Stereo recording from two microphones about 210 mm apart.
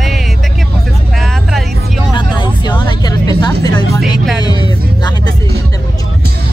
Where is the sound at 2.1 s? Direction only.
20° left (ahead or behind).